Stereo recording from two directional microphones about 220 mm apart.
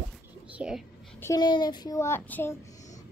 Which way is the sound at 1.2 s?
15° left (ahead or behind).